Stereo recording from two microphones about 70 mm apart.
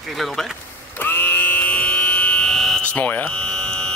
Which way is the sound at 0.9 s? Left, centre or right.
Left.